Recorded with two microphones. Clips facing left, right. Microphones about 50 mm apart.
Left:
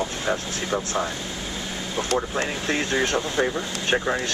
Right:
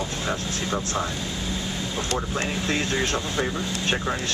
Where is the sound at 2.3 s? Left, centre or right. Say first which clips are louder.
Left 1 dB; centre.